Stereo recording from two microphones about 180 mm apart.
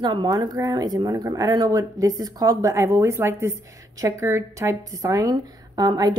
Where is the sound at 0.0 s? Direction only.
25° right (ahead or behind).